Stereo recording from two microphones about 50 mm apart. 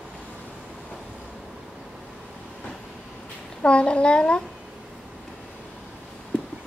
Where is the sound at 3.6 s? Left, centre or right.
Left.